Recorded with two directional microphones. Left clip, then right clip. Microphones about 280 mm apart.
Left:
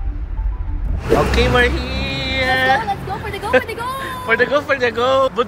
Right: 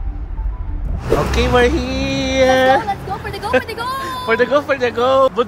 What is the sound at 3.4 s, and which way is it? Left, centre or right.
Speech, centre.